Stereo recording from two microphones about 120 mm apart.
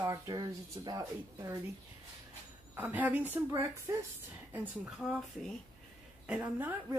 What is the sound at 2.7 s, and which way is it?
Speech, 15° right (ahead or behind).